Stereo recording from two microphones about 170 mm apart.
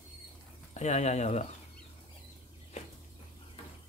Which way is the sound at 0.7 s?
40° left (ahead or behind).